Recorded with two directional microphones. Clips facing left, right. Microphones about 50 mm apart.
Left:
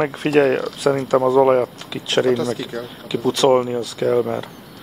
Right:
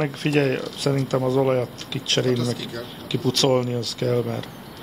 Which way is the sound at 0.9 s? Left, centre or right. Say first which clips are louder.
Left 6 dB; left.